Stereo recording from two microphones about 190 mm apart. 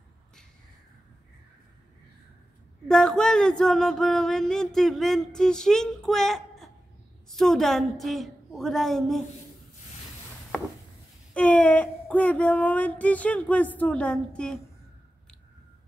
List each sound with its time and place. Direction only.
2.9 s speech: centre (ahead or behind)
11.3 s speech: 5° left (ahead or behind)